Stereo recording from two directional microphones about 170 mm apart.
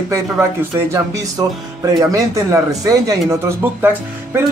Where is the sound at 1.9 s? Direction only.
20° right (ahead or behind).